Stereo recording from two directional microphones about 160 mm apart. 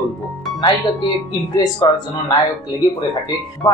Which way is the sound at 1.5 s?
25° left (ahead or behind).